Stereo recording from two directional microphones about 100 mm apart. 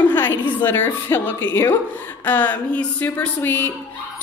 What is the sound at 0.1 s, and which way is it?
A woman's voice, 20° left (ahead or behind).